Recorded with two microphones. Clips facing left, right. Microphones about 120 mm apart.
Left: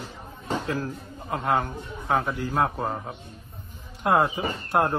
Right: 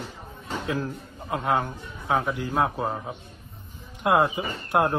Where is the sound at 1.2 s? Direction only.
Centre (ahead or behind).